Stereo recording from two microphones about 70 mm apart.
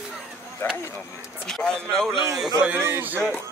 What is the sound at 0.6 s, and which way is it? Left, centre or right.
Speech, left.